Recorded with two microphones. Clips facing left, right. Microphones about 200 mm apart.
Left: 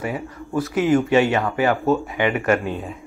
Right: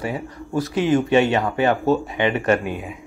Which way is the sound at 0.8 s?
20° right (ahead or behind).